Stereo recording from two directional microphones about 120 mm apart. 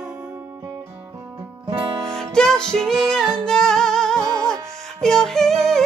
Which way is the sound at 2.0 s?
5° left (ahead or behind).